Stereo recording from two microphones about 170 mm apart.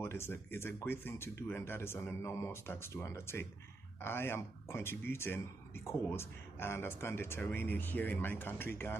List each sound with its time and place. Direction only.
0.0 s speech: 15° left (ahead or behind)